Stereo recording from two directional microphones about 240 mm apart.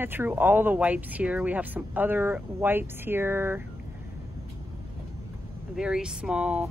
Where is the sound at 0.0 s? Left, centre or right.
Centre.